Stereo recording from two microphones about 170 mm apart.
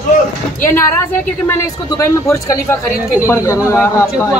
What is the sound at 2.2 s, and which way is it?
Speech, 15° left (ahead or behind).